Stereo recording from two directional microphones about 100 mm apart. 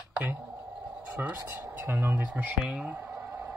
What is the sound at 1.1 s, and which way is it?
Speech, 25° right (ahead or behind).